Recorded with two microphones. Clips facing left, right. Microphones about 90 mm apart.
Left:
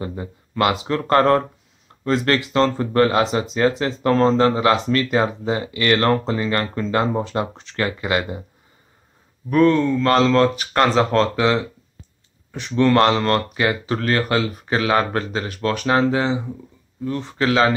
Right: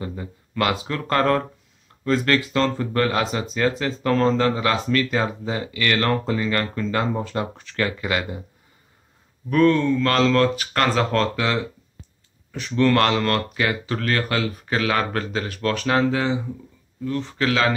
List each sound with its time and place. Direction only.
0.0 s speech: 25° left (ahead or behind)
9.5 s speech: 20° left (ahead or behind)
12.6 s speech: 20° left (ahead or behind)
15.4 s speech: 10° left (ahead or behind)